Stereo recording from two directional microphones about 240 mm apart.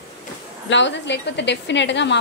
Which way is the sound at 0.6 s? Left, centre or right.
Left.